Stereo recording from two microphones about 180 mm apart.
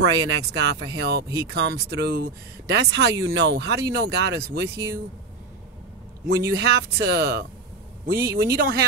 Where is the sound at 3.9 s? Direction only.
65° right (ahead or behind).